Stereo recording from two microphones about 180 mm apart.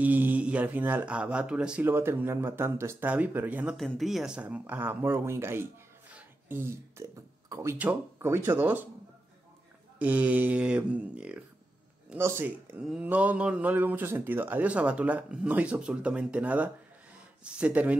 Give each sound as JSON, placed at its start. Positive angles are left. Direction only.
{"t": 0.0, "sound": "speech", "side_deg": -10}
{"t": 6.1, "sound": "beatboxing", "side_deg": -10}
{"t": 7.8, "sound": "speech", "side_deg": -10}
{"t": 9.9, "sound": "speech", "side_deg": -10}